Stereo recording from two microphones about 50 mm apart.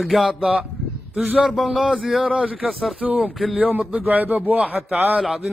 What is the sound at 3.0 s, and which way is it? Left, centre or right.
Speech, right.